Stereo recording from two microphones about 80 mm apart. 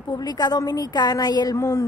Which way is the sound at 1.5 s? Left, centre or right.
Left.